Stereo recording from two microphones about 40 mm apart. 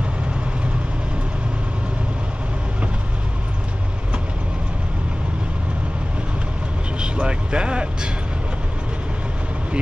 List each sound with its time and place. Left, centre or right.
7.0 s vehicle: right